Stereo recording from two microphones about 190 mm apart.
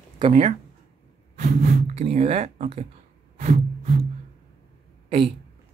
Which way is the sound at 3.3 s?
45° right (ahead or behind).